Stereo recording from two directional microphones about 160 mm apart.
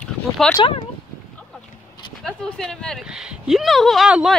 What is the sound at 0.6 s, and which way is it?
Speech, 35° left (ahead or behind).